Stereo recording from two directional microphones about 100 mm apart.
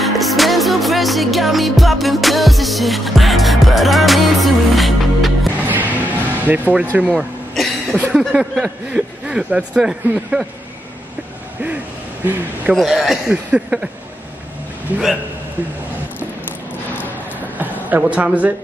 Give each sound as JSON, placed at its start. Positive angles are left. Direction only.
{"t": 0.0, "sound": "music", "side_deg": 0}
{"t": 5.7, "sound": "music", "side_deg": -15}
{"t": 7.1, "sound": "cough", "side_deg": 0}
{"t": 8.1, "sound": "speech", "side_deg": -5}
{"t": 12.7, "sound": "speech", "side_deg": -5}
{"t": 14.9, "sound": "speech", "side_deg": -15}
{"t": 17.6, "sound": "a sound", "side_deg": -15}